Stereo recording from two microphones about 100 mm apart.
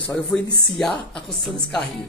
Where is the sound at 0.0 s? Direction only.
5° left (ahead or behind).